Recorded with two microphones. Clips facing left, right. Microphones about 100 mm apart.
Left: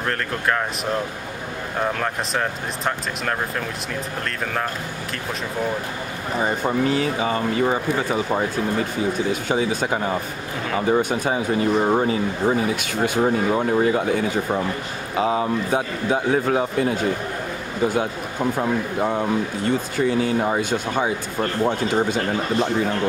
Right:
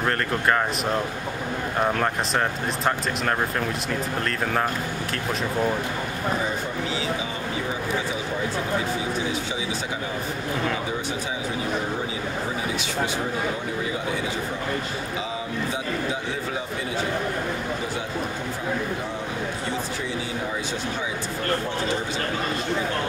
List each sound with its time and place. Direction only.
2.0 s speech: centre (ahead or behind)
6.4 s speech: 55° left (ahead or behind)
10.9 s speech: 55° left (ahead or behind)
18.6 s speech: 65° left (ahead or behind)